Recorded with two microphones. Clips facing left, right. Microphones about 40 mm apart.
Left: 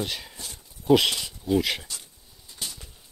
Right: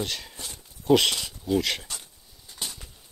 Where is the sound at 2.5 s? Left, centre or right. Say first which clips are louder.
Right 1 dB; right.